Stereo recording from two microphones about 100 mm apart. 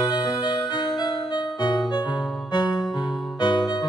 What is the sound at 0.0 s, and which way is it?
Music, 45° left (ahead or behind).